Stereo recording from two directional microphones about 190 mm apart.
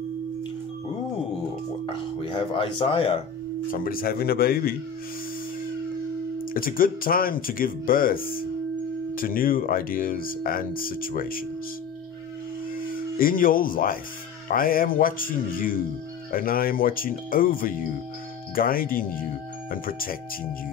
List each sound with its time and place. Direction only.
1.9 s speech: 25° left (ahead or behind)
3.7 s speech: 50° left (ahead or behind)
6.5 s speech: 50° left (ahead or behind)
12.7 s speech: 50° left (ahead or behind)